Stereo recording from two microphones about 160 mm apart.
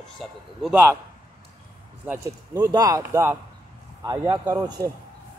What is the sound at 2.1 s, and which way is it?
Speech, 20° right (ahead or behind).